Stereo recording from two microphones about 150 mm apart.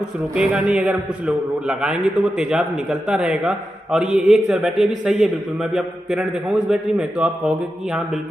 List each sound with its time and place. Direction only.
0.3 s a man's voice: 5° right (ahead or behind)